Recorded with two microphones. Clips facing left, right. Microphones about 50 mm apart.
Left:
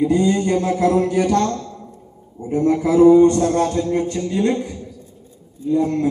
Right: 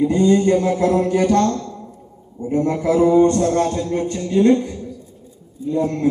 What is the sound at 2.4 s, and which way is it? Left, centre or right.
Speech, centre.